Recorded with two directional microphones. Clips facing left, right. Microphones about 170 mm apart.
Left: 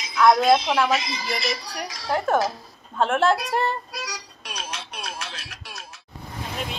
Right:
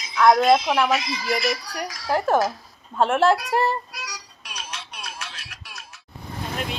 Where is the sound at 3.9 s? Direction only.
30° left (ahead or behind).